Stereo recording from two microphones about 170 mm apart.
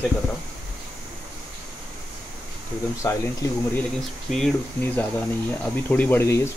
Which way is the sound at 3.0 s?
20° left (ahead or behind).